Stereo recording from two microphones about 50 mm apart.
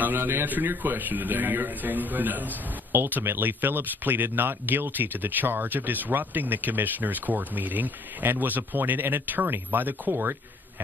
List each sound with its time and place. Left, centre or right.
0.0 s speech: right